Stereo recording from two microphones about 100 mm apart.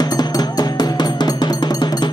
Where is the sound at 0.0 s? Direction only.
40° left (ahead or behind).